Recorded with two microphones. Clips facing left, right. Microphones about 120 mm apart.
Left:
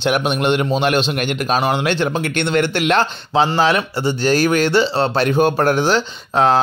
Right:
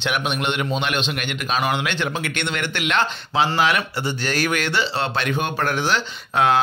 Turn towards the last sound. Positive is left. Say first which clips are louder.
# left 4 dB
turn(degrees=30)  # may be behind; listen again after turning